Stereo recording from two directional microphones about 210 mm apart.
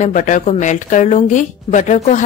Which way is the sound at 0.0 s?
35° left (ahead or behind).